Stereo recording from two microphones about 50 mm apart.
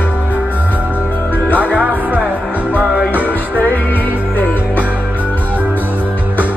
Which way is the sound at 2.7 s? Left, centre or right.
Right.